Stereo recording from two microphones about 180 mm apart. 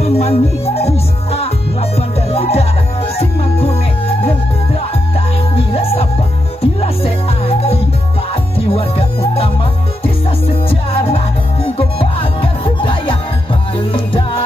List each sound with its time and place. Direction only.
0.0 s music: 35° left (ahead or behind)
5.6 s music: 35° left (ahead or behind)